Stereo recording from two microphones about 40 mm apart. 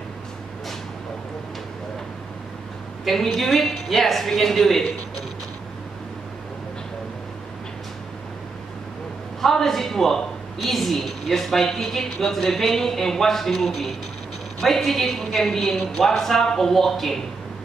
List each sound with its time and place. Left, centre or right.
3.1 s a woman's voice: centre
9.4 s a woman's voice: centre